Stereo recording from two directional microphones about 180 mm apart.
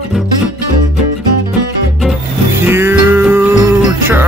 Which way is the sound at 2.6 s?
10° right (ahead or behind).